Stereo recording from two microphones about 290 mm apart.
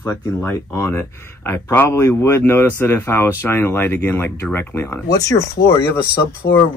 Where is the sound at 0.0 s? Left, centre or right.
Centre.